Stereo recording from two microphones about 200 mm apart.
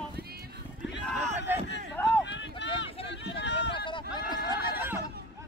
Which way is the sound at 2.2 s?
65° left (ahead or behind).